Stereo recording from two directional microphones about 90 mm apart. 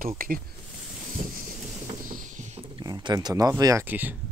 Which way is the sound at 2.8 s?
50° right (ahead or behind).